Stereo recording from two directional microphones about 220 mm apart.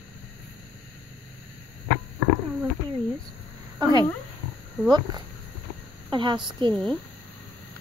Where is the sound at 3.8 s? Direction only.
15° right (ahead or behind).